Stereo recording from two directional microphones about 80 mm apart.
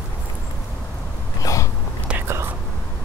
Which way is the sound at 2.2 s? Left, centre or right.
Right.